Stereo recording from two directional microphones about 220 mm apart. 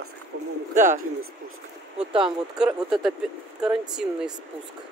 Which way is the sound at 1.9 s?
25° right (ahead or behind).